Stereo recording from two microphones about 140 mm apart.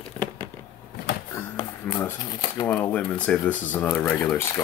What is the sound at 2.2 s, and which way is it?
Speech, 30° left (ahead or behind).